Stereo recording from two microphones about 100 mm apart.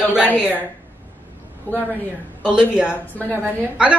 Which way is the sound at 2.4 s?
10° right (ahead or behind).